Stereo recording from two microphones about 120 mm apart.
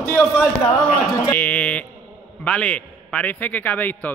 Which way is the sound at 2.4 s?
10° left (ahead or behind).